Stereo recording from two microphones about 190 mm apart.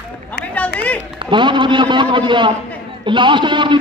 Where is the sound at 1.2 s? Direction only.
25° right (ahead or behind).